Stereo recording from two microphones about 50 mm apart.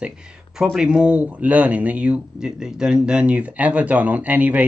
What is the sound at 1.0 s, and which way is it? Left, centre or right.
Speech, right.